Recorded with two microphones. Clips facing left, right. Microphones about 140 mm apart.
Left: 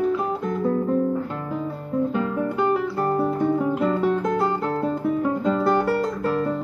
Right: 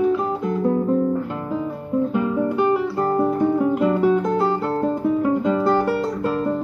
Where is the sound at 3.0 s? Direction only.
10° right (ahead or behind).